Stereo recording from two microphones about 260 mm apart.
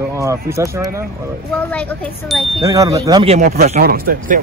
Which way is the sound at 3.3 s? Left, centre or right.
Right.